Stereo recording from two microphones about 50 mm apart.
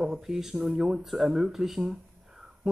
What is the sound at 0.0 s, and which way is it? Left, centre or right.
Speech, centre.